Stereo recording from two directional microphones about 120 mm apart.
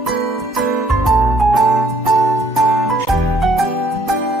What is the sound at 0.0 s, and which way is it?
Music, centre (ahead or behind).